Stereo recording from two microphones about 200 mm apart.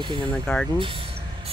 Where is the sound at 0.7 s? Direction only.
25° right (ahead or behind).